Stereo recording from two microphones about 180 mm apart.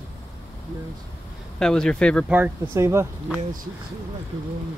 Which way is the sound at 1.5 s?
5° left (ahead or behind).